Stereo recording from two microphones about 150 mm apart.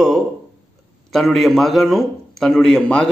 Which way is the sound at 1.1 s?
Centre (ahead or behind).